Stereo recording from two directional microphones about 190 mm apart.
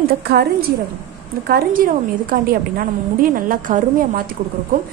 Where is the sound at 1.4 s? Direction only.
50° right (ahead or behind).